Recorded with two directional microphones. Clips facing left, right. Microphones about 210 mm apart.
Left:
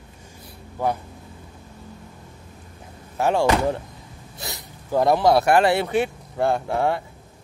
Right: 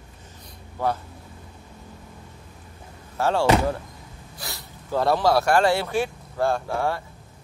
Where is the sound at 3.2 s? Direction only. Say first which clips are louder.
Left 1 dB; 15° left (ahead or behind).